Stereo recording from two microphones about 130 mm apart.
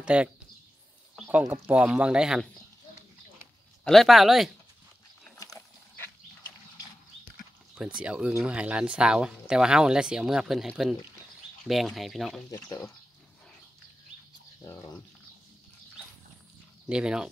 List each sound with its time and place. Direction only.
0.0 s speech: 10° right (ahead or behind)
1.5 s speech: 10° right (ahead or behind)
3.8 s speech: centre (ahead or behind)
8.0 s speech: 10° right (ahead or behind)
12.4 s speech: 25° left (ahead or behind)
14.6 s speech: 25° left (ahead or behind)
16.9 s speech: 5° right (ahead or behind)